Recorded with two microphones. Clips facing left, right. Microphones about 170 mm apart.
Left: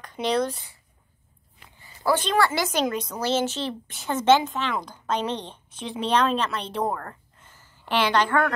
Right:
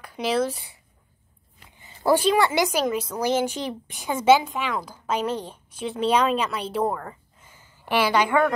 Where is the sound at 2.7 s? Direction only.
5° right (ahead or behind).